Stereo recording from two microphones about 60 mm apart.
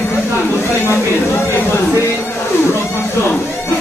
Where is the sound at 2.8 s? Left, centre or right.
Left.